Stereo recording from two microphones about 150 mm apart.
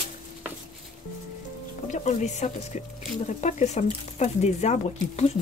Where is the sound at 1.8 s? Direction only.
50° left (ahead or behind).